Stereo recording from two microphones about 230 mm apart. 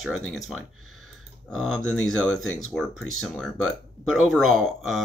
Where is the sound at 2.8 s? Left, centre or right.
Centre.